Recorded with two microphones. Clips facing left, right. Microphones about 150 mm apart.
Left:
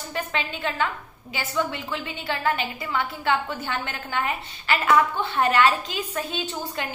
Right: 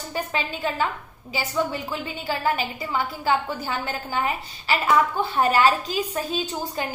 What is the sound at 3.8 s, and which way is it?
Speech, 35° right (ahead or behind).